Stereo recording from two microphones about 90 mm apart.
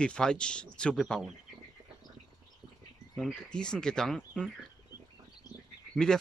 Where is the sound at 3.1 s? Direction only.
5° left (ahead or behind).